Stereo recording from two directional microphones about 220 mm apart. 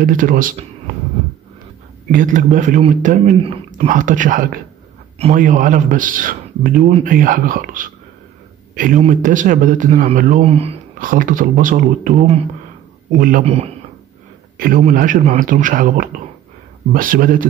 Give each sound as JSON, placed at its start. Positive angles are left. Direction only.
{"t": 0.0, "sound": "a man's voice", "side_deg": -40}
{"t": 2.0, "sound": "a man's voice", "side_deg": -35}